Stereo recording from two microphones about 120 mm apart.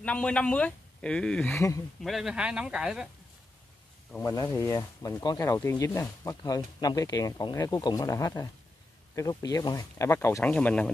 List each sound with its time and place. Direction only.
0.0 s speech: 10° left (ahead or behind)
4.2 s speech: 25° left (ahead or behind); by 10.9 s 10° left (ahead or behind)